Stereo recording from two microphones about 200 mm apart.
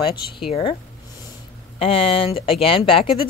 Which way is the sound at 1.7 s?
25° left (ahead or behind).